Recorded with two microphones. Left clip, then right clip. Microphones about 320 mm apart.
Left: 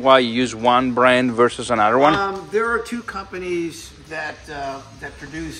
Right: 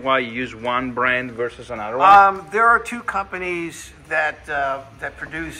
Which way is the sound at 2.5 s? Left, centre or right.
Right.